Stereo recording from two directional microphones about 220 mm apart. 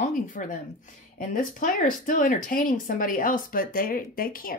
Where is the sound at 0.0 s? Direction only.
35° left (ahead or behind).